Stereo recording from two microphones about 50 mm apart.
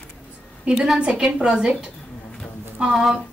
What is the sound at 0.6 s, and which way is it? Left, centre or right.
A woman's voice, centre.